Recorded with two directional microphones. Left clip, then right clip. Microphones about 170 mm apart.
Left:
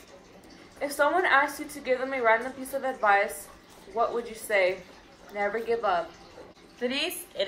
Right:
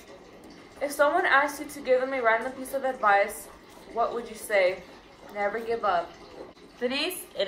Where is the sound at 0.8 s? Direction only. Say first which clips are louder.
Right 1 dB; 25° left (ahead or behind).